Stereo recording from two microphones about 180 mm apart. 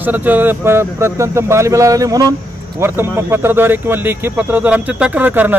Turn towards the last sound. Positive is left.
turn(degrees=-10)  # may be behind; listen again after turning